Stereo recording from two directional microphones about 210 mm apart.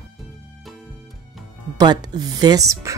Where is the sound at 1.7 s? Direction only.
20° right (ahead or behind).